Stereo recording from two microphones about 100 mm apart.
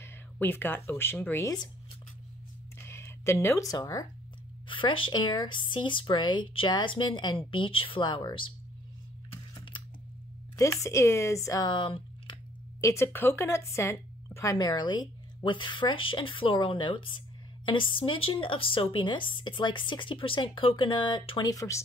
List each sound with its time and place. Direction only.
0.0 s speech: 20° left (ahead or behind)
2.8 s speech: 25° left (ahead or behind); by 4.1 s 40° left (ahead or behind)
4.6 s speech: 55° left (ahead or behind)
8.0 s speech: 50° left (ahead or behind)
10.5 s a woman's voice: 30° left (ahead or behind)
11.6 s a sound: 55° left (ahead or behind)
12.8 s speech: 25° left (ahead or behind)